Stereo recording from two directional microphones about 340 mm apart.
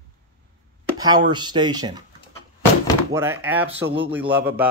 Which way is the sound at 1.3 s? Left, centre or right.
Centre.